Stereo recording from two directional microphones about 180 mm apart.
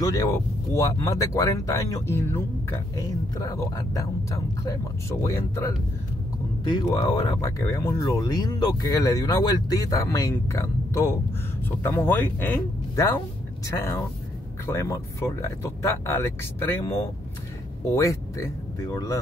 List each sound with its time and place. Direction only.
0.0 s speech: 20° left (ahead or behind)